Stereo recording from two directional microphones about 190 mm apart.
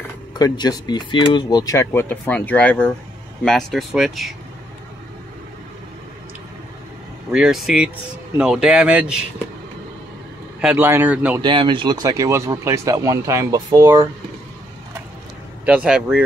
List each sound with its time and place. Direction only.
0.3 s speech: 20° left (ahead or behind); by 4.4 s centre (ahead or behind)
7.2 s speech: 5° right (ahead or behind)
10.6 s speech: 10° right (ahead or behind)
11.4 s speech: 25° right (ahead or behind)
15.6 s speech: 5° right (ahead or behind)